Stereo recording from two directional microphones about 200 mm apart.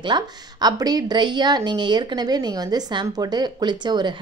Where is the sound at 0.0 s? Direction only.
20° right (ahead or behind).